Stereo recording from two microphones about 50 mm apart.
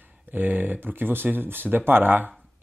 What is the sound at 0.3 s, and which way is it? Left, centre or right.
Speech, right.